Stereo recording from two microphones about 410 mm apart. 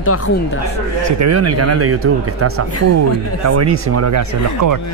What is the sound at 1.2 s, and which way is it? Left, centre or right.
Speech, right.